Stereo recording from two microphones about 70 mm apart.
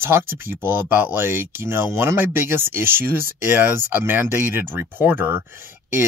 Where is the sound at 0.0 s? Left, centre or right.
Right.